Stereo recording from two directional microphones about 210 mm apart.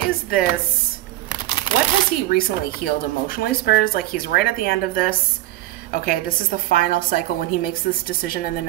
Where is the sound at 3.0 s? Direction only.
45° left (ahead or behind).